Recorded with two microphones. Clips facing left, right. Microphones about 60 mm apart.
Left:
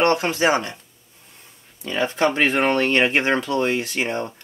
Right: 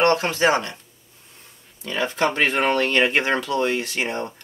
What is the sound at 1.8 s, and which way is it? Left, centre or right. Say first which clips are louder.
Speech: left 2 dB; left.